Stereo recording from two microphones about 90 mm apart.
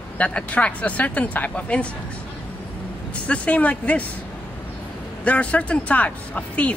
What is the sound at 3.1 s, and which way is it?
Speech, 15° left (ahead or behind).